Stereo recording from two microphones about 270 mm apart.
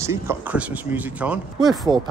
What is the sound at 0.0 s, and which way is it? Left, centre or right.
Speech, centre.